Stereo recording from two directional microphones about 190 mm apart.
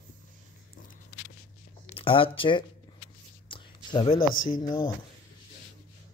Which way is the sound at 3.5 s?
25° left (ahead or behind).